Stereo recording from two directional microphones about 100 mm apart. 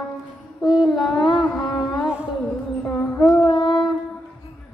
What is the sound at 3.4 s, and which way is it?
Child singing, 50° left (ahead or behind).